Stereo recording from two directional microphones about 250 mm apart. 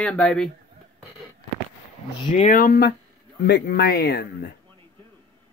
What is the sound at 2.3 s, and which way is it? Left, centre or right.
Speech, left.